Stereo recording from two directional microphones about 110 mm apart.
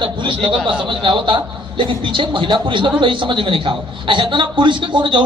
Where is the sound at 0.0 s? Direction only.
50° right (ahead or behind).